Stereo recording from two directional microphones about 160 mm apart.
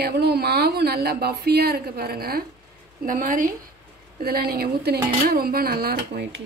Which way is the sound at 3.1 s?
60° right (ahead or behind).